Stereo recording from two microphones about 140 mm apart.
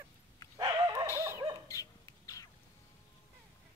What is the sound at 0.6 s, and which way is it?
Dog, 25° right (ahead or behind).